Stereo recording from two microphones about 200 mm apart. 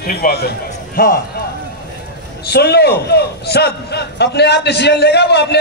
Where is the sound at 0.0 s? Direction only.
50° left (ahead or behind).